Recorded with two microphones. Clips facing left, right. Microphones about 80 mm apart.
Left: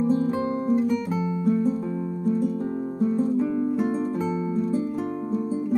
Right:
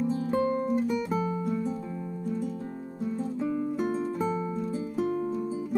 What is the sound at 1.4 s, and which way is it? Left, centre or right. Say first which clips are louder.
Music: left 8 dB; left.